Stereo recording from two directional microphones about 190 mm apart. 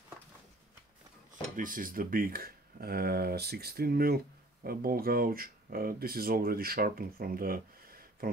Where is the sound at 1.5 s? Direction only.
45° right (ahead or behind).